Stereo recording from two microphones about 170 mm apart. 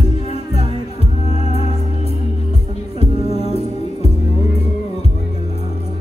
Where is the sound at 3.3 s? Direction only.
35° left (ahead or behind).